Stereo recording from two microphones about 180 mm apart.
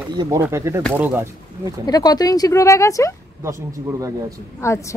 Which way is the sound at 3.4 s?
15° right (ahead or behind).